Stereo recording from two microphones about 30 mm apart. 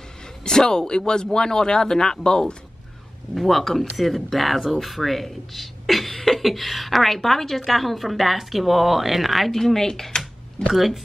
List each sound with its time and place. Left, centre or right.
0.5 s speech: left
3.3 s a woman's voice: centre
9.5 s speech: centre
10.7 s a woman's voice: centre